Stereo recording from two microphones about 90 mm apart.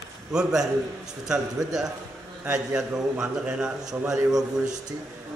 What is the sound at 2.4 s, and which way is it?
A man's voice, 20° right (ahead or behind).